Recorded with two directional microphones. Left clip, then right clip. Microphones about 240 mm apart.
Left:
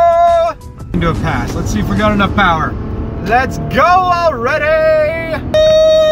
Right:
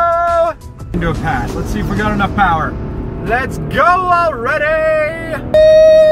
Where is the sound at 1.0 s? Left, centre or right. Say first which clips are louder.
Left 1 dB; left.